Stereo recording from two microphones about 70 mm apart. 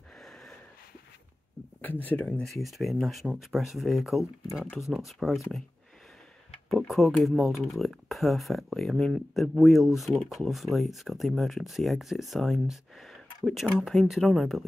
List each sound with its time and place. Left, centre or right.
0.2 s a sound: centre
1.8 s speech: left
2.4 s speech: centre
6.5 s tick-tock: centre
6.9 s speech: centre